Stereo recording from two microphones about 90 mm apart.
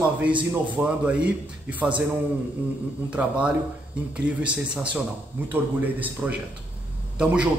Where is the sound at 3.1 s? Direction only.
10° right (ahead or behind).